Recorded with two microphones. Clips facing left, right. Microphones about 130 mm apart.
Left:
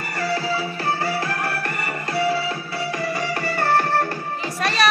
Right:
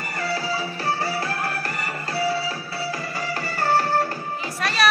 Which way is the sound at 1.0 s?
35° right (ahead or behind).